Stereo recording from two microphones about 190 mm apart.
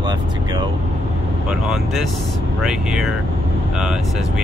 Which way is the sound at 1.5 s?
Centre (ahead or behind).